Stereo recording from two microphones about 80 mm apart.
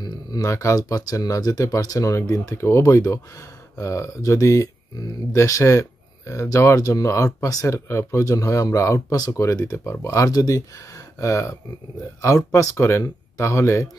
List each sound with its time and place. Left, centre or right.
0.0 s speech: left